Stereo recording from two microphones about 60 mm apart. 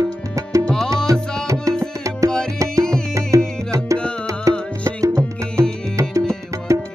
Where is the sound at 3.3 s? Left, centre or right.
Right.